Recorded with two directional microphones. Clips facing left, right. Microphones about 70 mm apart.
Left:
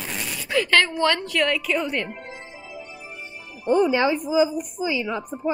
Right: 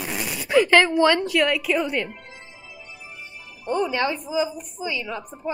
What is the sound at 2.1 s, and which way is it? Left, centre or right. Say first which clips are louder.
Music: left 5 dB; left.